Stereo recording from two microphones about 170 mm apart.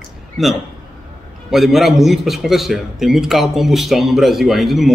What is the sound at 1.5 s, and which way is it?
A man's voice, centre (ahead or behind).